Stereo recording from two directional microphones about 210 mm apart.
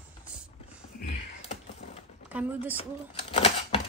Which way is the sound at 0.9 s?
35° left (ahead or behind).